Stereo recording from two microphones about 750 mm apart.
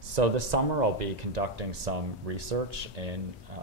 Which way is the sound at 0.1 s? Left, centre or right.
Right.